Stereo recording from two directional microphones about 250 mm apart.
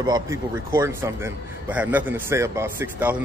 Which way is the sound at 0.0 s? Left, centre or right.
Centre.